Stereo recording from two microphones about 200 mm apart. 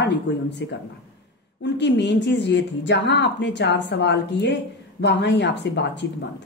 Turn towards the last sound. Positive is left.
turn(degrees=60)  # may be behind; listen again after turning